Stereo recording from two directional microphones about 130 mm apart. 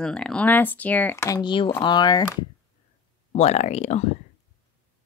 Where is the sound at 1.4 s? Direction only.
40° left (ahead or behind).